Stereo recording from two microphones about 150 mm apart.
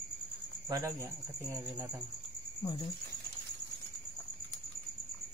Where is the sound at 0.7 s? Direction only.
20° right (ahead or behind).